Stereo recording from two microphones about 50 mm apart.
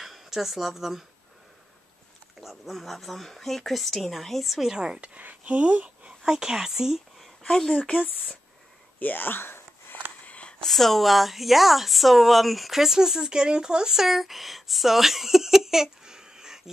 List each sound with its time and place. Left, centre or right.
0.0 s speech: centre
2.4 s speech: centre
5.1 s speech: right
6.2 s speech: centre
7.5 s speech: centre
9.0 s a sound: left
10.2 s a sound: left
10.6 s speech: centre